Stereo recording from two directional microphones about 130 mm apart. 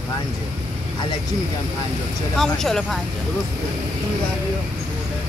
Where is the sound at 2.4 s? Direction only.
5° left (ahead or behind).